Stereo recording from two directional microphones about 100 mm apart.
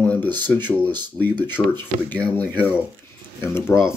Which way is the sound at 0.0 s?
15° left (ahead or behind).